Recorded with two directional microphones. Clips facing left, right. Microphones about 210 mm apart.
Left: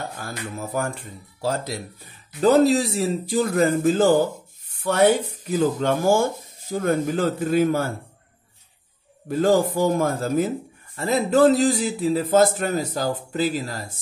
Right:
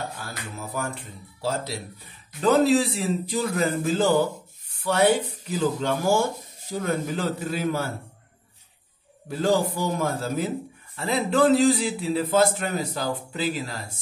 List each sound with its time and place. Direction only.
0.2 s a man's voice: 50° left (ahead or behind)
2.4 s a man's voice: 40° left (ahead or behind)
4.7 s a sound: 55° left (ahead or behind)
5.8 s a man's voice: 50° left (ahead or behind)
9.3 s a man's voice: 50° left (ahead or behind)